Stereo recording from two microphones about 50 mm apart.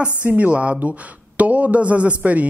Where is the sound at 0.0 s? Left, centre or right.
Right.